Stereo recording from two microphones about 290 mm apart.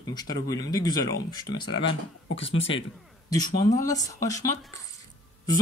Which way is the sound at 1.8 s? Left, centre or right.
Left.